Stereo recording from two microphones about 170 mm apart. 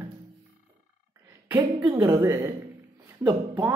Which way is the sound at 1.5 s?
25° right (ahead or behind).